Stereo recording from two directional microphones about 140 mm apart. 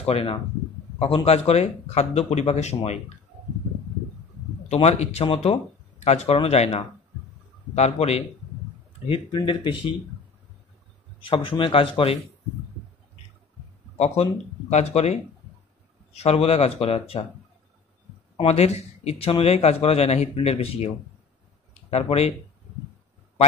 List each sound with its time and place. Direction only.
0.0 s speech: 45° left (ahead or behind)
4.8 s speech: 50° left (ahead or behind)
9.0 s speech: 40° left (ahead or behind)
11.1 s speech: 40° left (ahead or behind)
13.9 s speech: 50° left (ahead or behind)
16.2 s speech: 45° left (ahead or behind)
18.4 s speech: 45° left (ahead or behind)
21.9 s speech: 45° left (ahead or behind)